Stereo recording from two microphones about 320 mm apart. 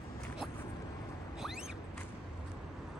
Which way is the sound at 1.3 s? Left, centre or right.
Centre.